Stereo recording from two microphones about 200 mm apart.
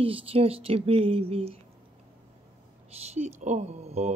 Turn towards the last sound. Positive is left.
turn(degrees=-35)  # may be behind; listen again after turning